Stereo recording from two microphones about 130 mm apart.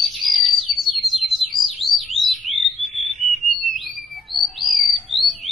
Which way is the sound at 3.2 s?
Centre (ahead or behind).